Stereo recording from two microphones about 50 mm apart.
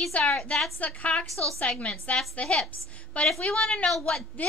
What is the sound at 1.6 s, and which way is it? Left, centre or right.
A woman's voice, left.